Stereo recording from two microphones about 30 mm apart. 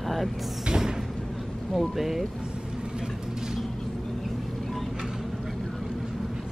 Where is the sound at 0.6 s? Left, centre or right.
Right.